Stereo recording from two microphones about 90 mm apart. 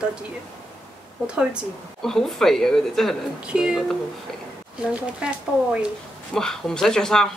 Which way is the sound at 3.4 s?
10° right (ahead or behind).